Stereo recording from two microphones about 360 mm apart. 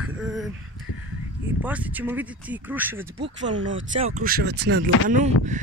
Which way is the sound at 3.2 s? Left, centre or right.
Right.